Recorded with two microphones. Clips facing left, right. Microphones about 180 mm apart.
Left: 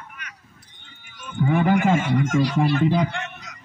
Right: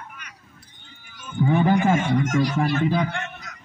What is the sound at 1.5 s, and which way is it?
A man's voice, 15° left (ahead or behind).